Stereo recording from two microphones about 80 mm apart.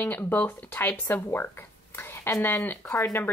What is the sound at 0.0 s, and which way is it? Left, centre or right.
Speech, left.